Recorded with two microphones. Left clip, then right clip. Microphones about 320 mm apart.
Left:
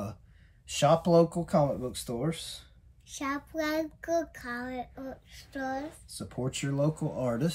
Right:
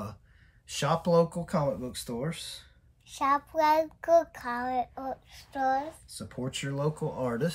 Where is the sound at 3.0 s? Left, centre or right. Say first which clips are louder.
Right 8 dB; centre.